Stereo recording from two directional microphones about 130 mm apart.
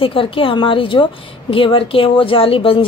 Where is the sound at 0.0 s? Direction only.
45° left (ahead or behind).